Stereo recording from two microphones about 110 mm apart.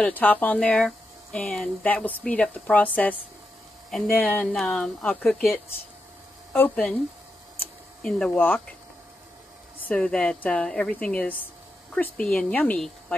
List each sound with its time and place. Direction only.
0.0 s speech: 15° left (ahead or behind)
4.5 s speech: 5° left (ahead or behind)
6.5 s speech: 20° left (ahead or behind)
8.0 s speech: 5° left (ahead or behind)
8.4 s speech: 15° left (ahead or behind)
9.8 s speech: 10° left (ahead or behind)